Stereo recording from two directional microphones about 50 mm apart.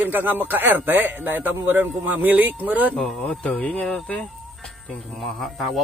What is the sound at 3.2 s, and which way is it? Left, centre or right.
Speech, left.